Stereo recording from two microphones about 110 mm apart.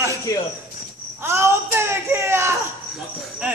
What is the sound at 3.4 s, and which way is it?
Speech, 15° right (ahead or behind).